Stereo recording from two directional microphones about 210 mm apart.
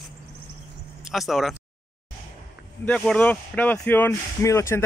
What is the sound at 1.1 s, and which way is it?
Speech, centre (ahead or behind).